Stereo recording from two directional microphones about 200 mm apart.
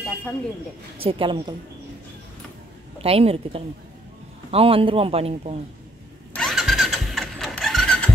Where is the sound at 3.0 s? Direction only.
30° right (ahead or behind).